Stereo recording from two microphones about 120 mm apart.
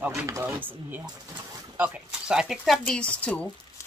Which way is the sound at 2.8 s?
10° left (ahead or behind).